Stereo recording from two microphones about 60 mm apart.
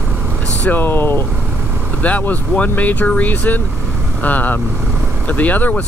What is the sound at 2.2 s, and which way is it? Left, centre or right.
Speech, left.